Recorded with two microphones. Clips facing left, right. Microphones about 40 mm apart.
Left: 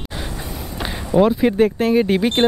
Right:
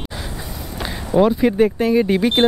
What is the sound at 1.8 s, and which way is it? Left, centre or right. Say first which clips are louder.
Speech: even; centre.